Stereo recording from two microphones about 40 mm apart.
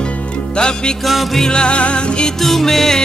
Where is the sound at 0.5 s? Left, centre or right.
Left.